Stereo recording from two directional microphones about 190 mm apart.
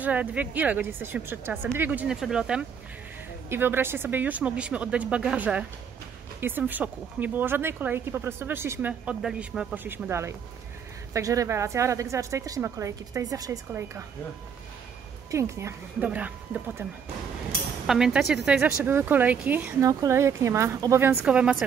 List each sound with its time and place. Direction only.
0.0 s speech: 10° right (ahead or behind)
15.3 s speech: 15° right (ahead or behind)
17.8 s speech: 5° right (ahead or behind)